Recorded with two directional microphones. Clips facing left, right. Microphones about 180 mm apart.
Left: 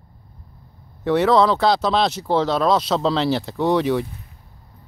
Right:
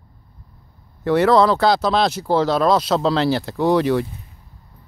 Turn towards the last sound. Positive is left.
turn(degrees=0)  # may be behind; listen again after turning